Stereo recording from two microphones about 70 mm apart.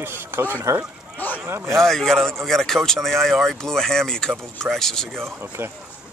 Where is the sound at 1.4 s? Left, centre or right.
Right.